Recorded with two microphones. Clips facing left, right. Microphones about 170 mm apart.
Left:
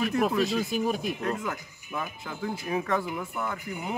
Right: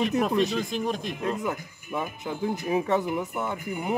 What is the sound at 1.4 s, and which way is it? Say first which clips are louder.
Speech: right 4 dB; 20° right (ahead or behind).